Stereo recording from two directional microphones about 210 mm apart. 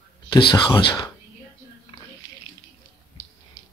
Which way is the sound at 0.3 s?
20° left (ahead or behind).